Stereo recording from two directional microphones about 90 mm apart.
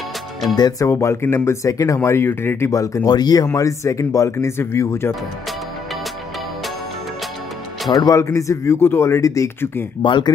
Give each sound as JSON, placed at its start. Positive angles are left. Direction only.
{"t": 0.6, "sound": "speech", "side_deg": 45}
{"t": 0.8, "sound": "speech", "side_deg": 30}
{"t": 2.0, "sound": "speech", "side_deg": 25}
{"t": 3.1, "sound": "speech", "side_deg": 45}
{"t": 3.5, "sound": "speech", "side_deg": 35}
{"t": 7.9, "sound": "speech", "side_deg": 40}
{"t": 10.0, "sound": "speech", "side_deg": 60}